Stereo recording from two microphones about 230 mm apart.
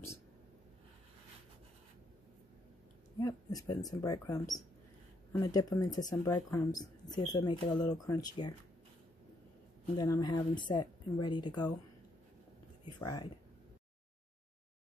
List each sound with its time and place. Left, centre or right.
3.2 s speech: centre
9.9 s speech: centre
13.0 s speech: centre